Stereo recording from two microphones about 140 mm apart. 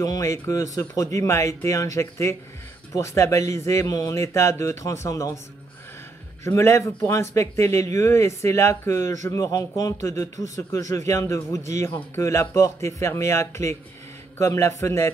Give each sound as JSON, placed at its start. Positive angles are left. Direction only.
{"t": 0.0, "sound": "a man's voice", "side_deg": 25}
{"t": 6.4, "sound": "a man's voice", "side_deg": 20}